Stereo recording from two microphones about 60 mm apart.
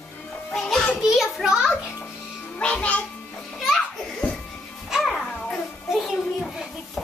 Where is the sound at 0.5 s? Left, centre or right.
Centre.